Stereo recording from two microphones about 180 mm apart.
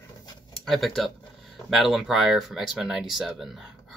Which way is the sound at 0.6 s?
Centre (ahead or behind).